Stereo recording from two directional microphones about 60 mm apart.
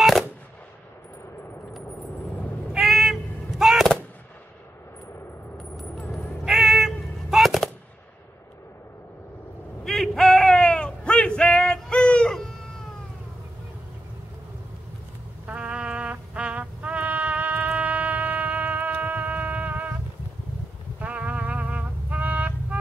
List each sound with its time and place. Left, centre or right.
0.0 s machine gun: centre
2.7 s artillery fire: centre
6.4 s cat: centre
10.1 s a sound: centre
15.4 s music: right
21.0 s music: right